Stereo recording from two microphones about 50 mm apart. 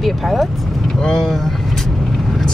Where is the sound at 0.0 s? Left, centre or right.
Centre.